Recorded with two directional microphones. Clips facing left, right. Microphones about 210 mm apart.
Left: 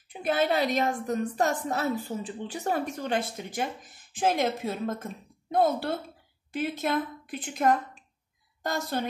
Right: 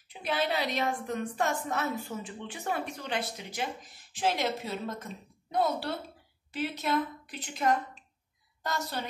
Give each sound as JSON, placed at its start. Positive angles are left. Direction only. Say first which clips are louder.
{"t": 0.1, "sound": "a woman's voice", "louder": "left 5 dB", "side_deg": 50}